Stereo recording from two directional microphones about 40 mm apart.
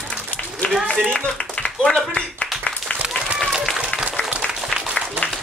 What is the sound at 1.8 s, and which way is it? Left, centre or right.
Clapping, left.